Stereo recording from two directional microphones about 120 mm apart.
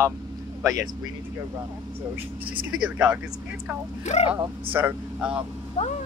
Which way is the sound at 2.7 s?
5° right (ahead or behind).